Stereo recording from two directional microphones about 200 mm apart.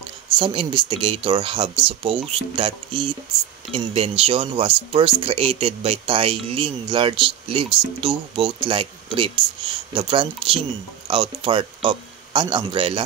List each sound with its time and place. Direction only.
0.4 s speech: 25° right (ahead or behind)